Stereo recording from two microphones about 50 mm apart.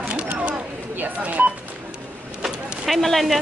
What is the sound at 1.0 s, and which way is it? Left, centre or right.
Telephone dialing, right.